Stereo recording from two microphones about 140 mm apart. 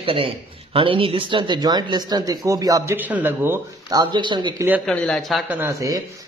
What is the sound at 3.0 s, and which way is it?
Speech, 10° right (ahead or behind).